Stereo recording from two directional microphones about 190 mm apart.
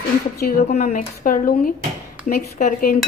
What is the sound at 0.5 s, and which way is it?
A woman's voice, 40° left (ahead or behind).